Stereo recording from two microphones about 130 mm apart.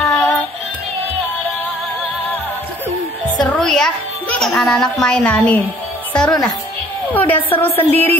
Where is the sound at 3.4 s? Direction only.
5° left (ahead or behind).